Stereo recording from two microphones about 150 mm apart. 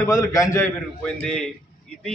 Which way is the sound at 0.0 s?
20° left (ahead or behind).